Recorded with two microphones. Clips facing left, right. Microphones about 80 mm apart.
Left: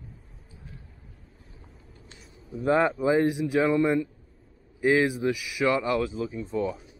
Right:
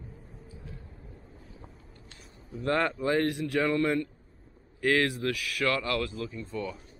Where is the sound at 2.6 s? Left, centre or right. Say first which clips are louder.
Left 5 dB; centre.